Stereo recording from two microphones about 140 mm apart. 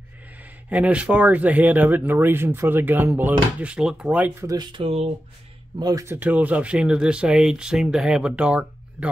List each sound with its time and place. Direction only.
0.4 s speech: 10° right (ahead or behind)
4.4 s speech: 25° right (ahead or behind)
4.7 s speech: 45° right (ahead or behind)
5.8 s speech: 25° right (ahead or behind)
6.1 s speech: 10° right (ahead or behind)